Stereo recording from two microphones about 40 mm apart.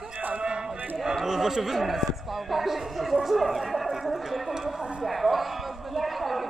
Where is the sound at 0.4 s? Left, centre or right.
Centre.